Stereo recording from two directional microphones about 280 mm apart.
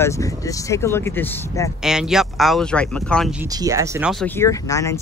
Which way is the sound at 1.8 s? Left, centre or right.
Centre.